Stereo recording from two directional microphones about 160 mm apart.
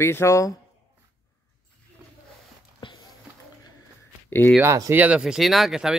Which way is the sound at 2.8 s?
30° left (ahead or behind).